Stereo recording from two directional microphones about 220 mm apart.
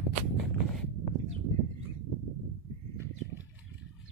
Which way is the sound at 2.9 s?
10° right (ahead or behind).